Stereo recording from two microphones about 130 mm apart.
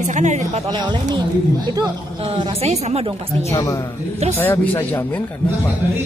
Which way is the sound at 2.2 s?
45° right (ahead or behind).